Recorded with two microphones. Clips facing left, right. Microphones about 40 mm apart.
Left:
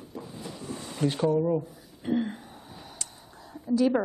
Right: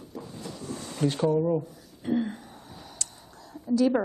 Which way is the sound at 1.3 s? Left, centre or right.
Centre.